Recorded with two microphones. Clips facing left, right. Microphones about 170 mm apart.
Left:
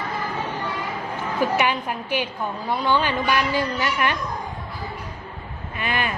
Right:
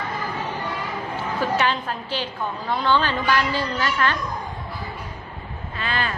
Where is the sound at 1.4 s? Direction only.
15° left (ahead or behind).